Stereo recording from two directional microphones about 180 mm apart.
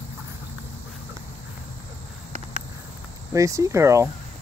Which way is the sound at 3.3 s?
15° right (ahead or behind).